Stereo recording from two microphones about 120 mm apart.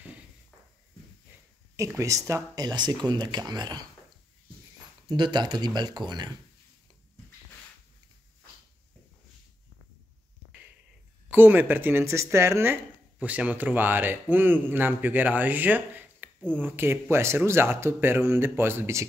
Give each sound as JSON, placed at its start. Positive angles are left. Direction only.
{"t": 1.8, "sound": "speech", "side_deg": -25}
{"t": 5.1, "sound": "speech", "side_deg": -40}
{"t": 11.2, "sound": "speech", "side_deg": -15}